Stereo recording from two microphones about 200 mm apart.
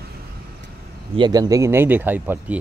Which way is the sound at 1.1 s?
20° right (ahead or behind).